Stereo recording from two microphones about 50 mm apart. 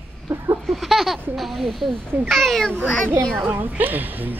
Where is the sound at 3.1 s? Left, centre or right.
Right.